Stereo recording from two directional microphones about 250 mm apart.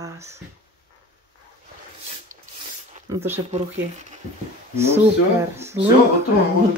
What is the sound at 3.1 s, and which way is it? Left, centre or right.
Speech, centre.